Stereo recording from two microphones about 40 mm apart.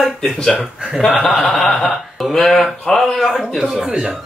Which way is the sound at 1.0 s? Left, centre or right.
Centre.